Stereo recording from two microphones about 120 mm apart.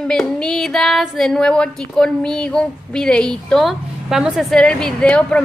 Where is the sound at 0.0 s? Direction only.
5° left (ahead or behind).